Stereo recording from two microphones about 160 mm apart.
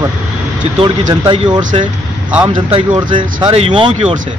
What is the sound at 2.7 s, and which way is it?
Speech, 35° right (ahead or behind).